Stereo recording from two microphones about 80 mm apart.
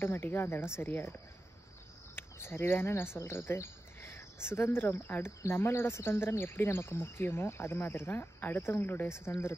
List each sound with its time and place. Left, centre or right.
0.0 s speech: left
2.1 s speech: left